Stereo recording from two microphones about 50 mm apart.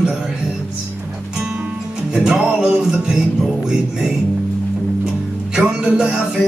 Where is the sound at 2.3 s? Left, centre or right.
Right.